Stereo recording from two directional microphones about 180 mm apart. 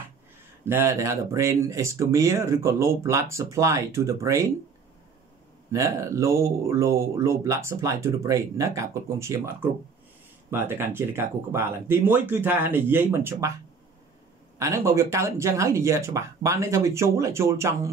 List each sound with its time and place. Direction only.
0.7 s speech: 15° right (ahead or behind)
5.7 s speech: 15° right (ahead or behind)
14.6 s speech: 15° right (ahead or behind)